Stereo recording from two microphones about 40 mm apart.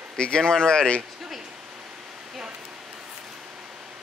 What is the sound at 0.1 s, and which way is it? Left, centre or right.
Speech, centre.